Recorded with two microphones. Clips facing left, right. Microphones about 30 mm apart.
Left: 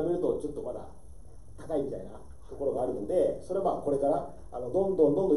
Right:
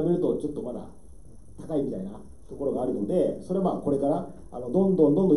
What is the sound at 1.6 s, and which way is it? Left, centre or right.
Speech, centre.